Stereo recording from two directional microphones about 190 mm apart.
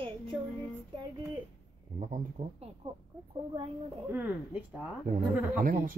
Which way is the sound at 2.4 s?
35° right (ahead or behind).